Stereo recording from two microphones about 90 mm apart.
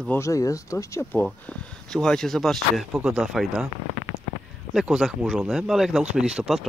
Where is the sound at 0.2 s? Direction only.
35° left (ahead or behind).